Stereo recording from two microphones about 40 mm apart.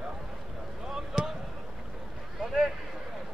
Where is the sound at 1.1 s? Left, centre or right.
Centre.